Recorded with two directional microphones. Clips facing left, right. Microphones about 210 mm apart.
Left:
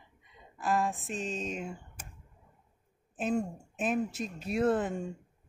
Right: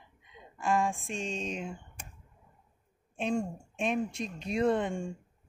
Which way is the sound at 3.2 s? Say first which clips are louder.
Even; 5° left (ahead or behind).